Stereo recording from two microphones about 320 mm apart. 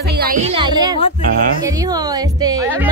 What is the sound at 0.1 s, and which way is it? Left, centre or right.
A woman's voice, right.